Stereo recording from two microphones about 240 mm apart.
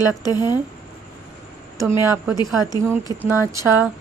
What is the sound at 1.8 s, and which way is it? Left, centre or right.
Speech, centre.